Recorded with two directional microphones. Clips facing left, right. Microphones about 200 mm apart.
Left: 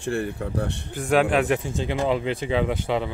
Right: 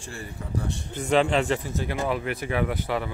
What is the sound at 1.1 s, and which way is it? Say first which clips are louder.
Speech: left 2 dB; 10° left (ahead or behind).